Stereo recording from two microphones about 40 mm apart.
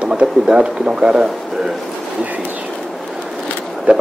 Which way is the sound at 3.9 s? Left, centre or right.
Right.